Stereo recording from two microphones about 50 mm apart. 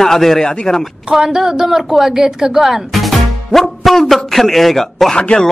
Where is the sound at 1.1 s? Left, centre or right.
Centre.